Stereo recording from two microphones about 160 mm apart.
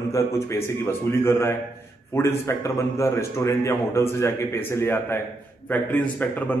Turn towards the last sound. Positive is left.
turn(degrees=10)  # may be behind; listen again after turning